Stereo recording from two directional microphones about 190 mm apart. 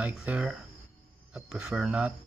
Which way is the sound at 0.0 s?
5° right (ahead or behind).